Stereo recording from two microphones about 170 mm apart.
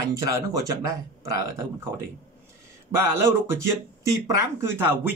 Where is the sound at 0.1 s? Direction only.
20° right (ahead or behind).